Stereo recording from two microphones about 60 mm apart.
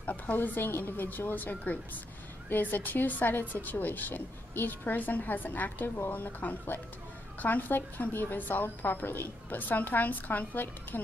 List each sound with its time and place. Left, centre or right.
0.0 s a woman's voice: left